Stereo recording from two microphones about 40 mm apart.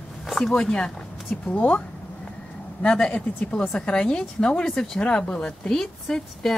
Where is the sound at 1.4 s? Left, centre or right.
Left.